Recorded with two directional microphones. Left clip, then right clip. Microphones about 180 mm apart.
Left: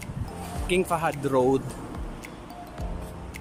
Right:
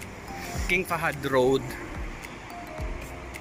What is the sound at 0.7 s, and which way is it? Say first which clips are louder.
Speech: left 1 dB; 15° left (ahead or behind).